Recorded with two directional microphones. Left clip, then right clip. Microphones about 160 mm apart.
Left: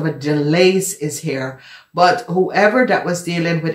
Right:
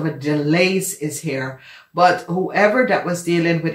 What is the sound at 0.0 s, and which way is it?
Speech, 30° left (ahead or behind).